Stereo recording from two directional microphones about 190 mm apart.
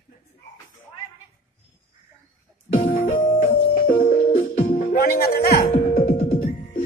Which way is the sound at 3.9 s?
35° left (ahead or behind).